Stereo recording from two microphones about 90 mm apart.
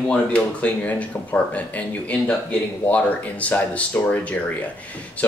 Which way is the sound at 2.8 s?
15° left (ahead or behind).